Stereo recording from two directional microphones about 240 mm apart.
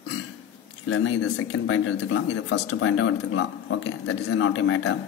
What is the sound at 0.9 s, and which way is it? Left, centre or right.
Speech, left.